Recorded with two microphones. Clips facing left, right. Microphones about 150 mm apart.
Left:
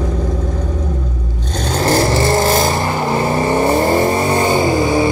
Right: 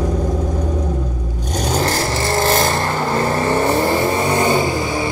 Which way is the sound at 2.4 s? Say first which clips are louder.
Left 2 dB; 5° left (ahead or behind).